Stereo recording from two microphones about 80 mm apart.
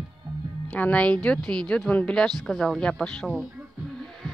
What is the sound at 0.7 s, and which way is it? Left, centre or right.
Speech, centre.